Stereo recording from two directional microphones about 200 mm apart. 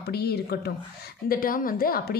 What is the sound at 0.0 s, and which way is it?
A woman's voice, 55° left (ahead or behind).